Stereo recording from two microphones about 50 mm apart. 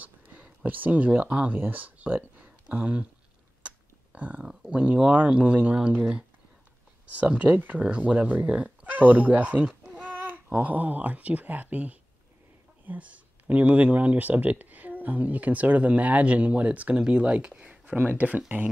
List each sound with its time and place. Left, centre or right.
0.0 s a sound: right
0.7 s speech: right
3.6 s burping: right
4.4 s speech: centre
8.8 s speech: right
10.0 s babbling: right
10.5 s speech: right
17.6 s speech: right